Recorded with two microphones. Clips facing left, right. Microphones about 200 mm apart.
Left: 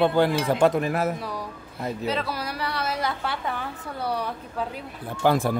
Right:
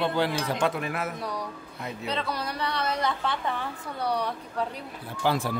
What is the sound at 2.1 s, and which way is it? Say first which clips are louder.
A woman's voice: even; 5° left (ahead or behind).